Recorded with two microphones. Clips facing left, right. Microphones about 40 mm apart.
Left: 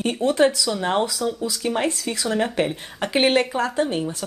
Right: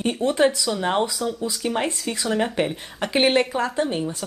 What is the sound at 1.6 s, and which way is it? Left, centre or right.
Speech, centre.